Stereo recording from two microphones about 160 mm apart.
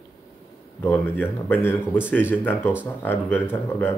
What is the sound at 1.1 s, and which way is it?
Speech, 15° left (ahead or behind).